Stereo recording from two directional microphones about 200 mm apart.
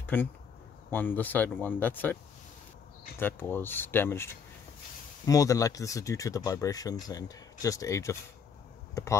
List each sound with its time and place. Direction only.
0.0 s speech: 10° left (ahead or behind)
3.2 s speech: 10° left (ahead or behind)